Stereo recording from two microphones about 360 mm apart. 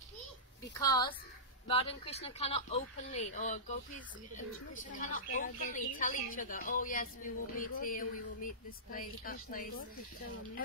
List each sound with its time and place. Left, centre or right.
0.7 s speech: centre
5.0 s a woman's voice: left